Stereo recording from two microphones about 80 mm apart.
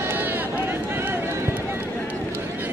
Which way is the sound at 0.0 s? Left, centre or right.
Right.